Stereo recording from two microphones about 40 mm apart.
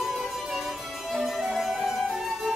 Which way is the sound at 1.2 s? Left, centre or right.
Centre.